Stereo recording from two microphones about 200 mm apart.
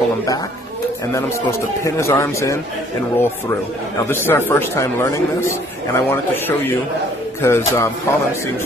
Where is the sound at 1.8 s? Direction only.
15° left (ahead or behind).